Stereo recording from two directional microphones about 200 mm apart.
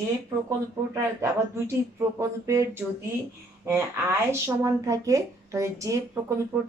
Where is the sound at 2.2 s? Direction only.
15° right (ahead or behind).